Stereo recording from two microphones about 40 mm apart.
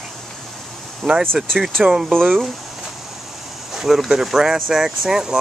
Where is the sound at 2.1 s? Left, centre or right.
Centre.